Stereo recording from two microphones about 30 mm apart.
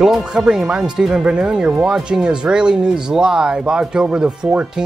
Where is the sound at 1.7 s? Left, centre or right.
Centre.